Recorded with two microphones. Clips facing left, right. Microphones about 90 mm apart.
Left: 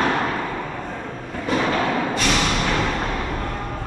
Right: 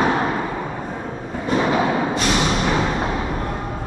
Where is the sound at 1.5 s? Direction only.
15° right (ahead or behind).